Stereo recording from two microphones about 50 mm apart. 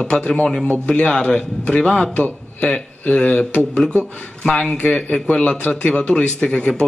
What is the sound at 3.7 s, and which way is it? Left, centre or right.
A man's voice, centre.